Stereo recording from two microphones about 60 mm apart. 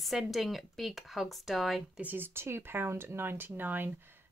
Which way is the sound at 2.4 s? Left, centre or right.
Right.